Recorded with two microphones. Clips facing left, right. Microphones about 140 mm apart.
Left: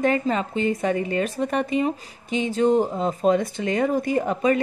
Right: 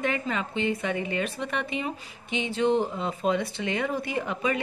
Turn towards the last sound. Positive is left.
turn(degrees=40)  # may be behind; listen again after turning